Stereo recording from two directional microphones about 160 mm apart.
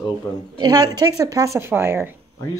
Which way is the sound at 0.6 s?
25° right (ahead or behind).